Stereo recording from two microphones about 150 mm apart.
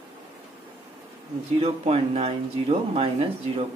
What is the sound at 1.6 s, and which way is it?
Speech, 40° right (ahead or behind).